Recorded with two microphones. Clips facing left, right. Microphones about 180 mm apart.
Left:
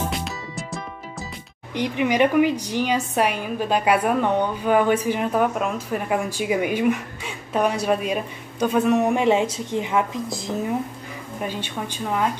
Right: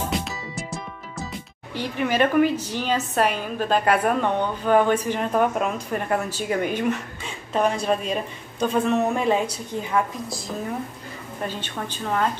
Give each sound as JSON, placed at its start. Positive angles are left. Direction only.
{"t": 0.1, "sound": "music", "side_deg": 0}
{"t": 1.7, "sound": "a woman's voice", "side_deg": 15}